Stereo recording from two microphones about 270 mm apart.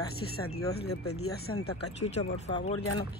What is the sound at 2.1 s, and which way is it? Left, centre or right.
Speech, left.